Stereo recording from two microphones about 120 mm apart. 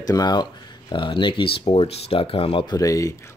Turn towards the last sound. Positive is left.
turn(degrees=30)  # may be behind; listen again after turning